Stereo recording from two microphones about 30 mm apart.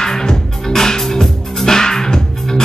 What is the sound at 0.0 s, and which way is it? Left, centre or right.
Music, left.